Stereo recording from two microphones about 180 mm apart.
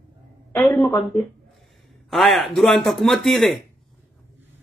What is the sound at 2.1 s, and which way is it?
Speech, centre (ahead or behind).